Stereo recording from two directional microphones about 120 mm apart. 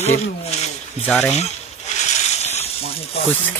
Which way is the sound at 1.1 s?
5° left (ahead or behind).